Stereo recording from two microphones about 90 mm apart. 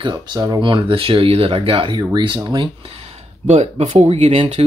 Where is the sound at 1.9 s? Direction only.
40° right (ahead or behind).